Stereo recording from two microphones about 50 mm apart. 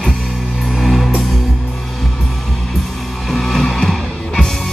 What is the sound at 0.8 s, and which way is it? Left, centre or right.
Music, centre.